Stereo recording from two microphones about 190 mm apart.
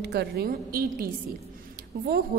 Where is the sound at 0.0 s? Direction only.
60° right (ahead or behind).